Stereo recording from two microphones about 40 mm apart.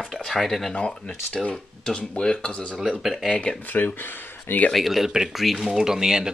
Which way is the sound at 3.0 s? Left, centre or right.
Centre.